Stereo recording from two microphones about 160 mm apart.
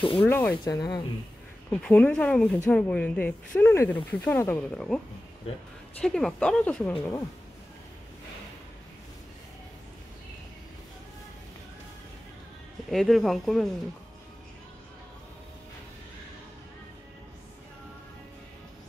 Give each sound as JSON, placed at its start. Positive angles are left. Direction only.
{"t": 0.2, "sound": "speech", "side_deg": 10}
{"t": 1.7, "sound": "speech", "side_deg": 10}
{"t": 12.9, "sound": "speech", "side_deg": 0}